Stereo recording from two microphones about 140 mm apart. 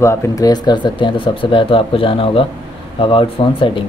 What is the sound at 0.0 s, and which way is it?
Speech, 25° left (ahead or behind).